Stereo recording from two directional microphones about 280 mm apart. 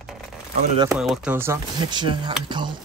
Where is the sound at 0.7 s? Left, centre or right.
Centre.